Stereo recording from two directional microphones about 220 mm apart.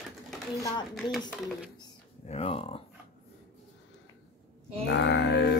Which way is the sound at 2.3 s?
25° left (ahead or behind).